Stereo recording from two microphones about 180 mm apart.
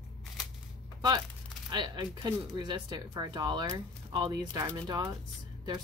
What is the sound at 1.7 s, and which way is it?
Speech, 25° right (ahead or behind).